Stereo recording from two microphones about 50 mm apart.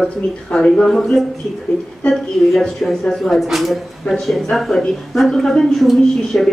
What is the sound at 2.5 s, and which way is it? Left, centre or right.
Speech, centre.